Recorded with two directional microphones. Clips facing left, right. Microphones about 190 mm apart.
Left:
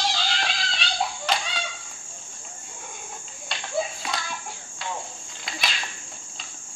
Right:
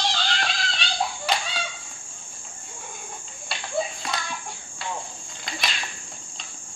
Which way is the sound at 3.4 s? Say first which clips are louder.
Even; centre (ahead or behind).